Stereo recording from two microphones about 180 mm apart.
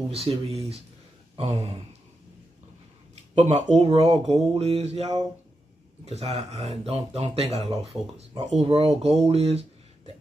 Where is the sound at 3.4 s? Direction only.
40° right (ahead or behind).